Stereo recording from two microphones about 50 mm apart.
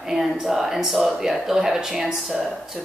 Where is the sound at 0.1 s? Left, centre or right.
Centre.